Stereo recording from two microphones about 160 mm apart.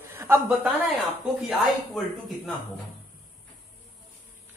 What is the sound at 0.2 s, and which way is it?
Speech, 15° right (ahead or behind).